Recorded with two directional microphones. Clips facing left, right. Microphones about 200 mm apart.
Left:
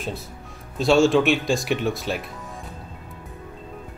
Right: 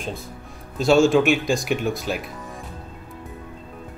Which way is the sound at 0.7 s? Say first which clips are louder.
Right 1 dB; centre (ahead or behind).